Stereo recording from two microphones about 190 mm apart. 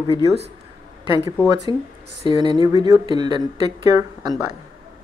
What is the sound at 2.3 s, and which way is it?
Speech, 25° right (ahead or behind).